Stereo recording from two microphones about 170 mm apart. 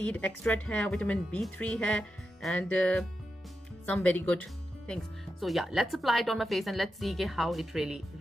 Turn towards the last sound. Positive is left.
turn(degrees=0)  # may be behind; listen again after turning